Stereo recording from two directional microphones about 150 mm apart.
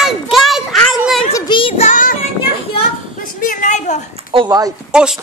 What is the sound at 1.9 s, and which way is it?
Child singing, 60° left (ahead or behind).